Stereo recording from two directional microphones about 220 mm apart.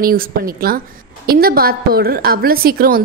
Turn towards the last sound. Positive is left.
turn(degrees=-40)  # may be behind; listen again after turning